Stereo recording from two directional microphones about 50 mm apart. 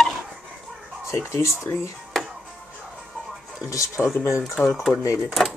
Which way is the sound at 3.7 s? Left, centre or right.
Left.